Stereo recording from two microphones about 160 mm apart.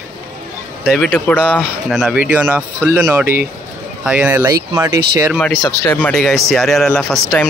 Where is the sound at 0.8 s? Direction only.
Centre (ahead or behind); by 5.3 s 20° right (ahead or behind).